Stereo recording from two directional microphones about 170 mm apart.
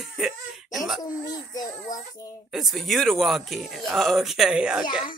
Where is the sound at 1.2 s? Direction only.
20° left (ahead or behind).